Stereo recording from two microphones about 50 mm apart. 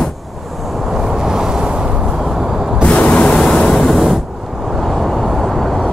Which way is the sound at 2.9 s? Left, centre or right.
Centre.